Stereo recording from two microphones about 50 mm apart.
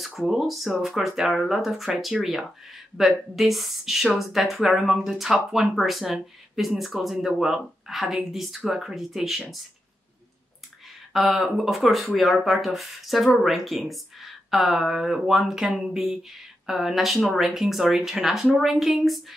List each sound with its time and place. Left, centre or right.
0.3 s speech: centre
11.1 s speech: centre